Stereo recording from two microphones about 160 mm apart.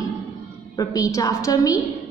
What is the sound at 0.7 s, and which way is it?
A woman's voice, 20° left (ahead or behind).